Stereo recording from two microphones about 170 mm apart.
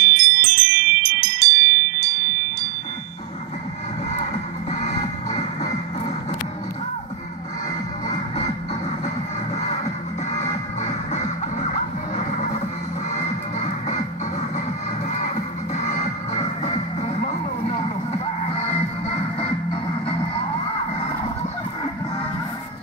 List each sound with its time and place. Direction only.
0.0 s music: 70° right (ahead or behind)
4.1 s music: 40° left (ahead or behind)
8.1 s music: 40° left (ahead or behind)
9.6 s music: 40° left (ahead or behind)
15.1 s music: 45° left (ahead or behind)